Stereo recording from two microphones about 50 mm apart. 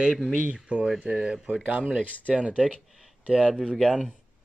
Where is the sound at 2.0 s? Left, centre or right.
Left.